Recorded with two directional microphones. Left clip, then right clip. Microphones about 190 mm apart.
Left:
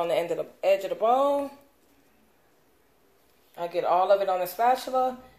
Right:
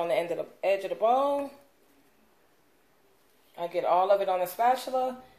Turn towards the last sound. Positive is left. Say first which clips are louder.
# left 2 dB
turn(degrees=15)  # may be behind; listen again after turning